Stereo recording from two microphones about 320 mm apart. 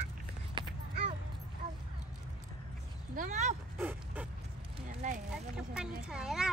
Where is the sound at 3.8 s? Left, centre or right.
Centre.